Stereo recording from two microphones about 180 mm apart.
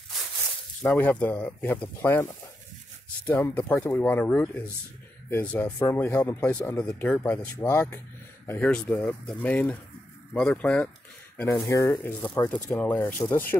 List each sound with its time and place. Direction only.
0.8 s speech: 10° left (ahead or behind)
3.3 s speech: 10° left (ahead or behind)